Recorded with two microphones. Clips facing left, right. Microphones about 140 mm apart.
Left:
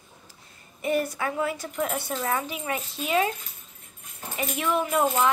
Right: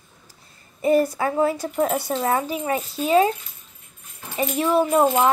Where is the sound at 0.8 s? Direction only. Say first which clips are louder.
Right 7 dB; 35° right (ahead or behind).